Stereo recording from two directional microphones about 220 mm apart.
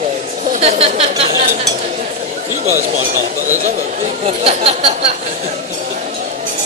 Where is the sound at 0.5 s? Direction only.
30° right (ahead or behind).